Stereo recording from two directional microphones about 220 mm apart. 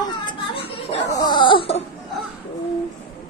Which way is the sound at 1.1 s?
20° left (ahead or behind).